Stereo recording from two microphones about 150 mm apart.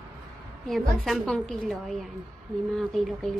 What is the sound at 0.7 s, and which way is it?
Speech, centre (ahead or behind).